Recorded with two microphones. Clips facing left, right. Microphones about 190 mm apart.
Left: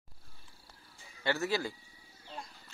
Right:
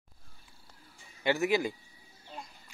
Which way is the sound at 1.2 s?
15° right (ahead or behind).